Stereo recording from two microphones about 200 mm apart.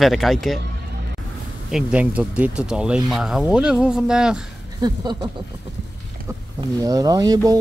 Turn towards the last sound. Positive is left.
turn(degrees=-20)  # may be behind; listen again after turning